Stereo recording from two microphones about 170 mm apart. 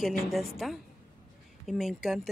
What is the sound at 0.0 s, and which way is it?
Speech, centre (ahead or behind).